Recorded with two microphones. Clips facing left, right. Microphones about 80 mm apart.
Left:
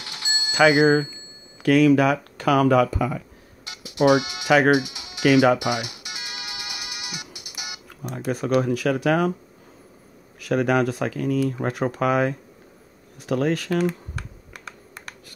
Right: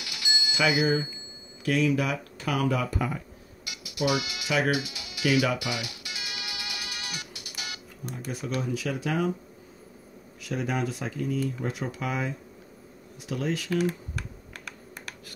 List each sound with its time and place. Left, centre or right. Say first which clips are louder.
0.0 s bicycle bell: left 2 dB; left
0.6 s speech: left 9 dB; left
1.6 s speech: left 9 dB; left
3.6 s music: left 10 dB; left
4.6 s speech: left 9 dB; left
5.6 s music: left 7 dB; left
8.0 s speech: left 9 dB; left
10.4 s speech: left 9 dB; left